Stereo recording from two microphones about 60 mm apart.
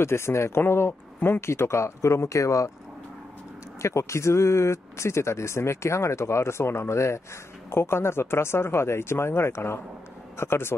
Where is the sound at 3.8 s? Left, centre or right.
Left.